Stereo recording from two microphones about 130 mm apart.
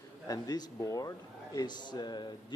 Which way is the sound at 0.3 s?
30° left (ahead or behind).